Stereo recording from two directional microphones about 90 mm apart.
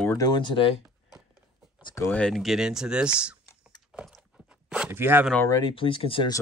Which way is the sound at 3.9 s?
10° right (ahead or behind).